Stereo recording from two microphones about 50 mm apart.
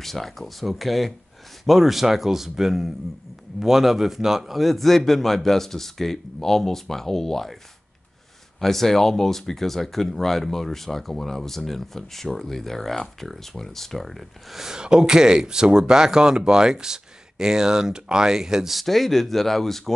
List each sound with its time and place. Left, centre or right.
0.0 s speech: centre
8.5 s speech: centre